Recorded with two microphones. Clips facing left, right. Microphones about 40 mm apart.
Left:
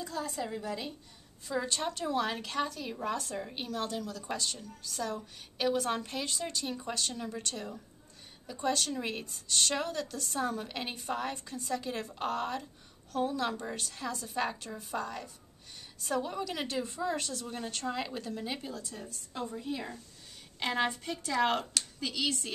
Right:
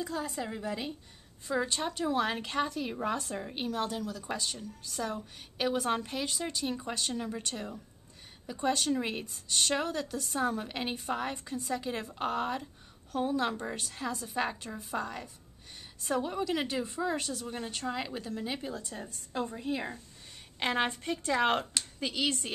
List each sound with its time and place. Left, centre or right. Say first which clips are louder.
0.0 s a woman's voice: right 1 dB; centre
18.7 s a woman's voice: right 2 dB; right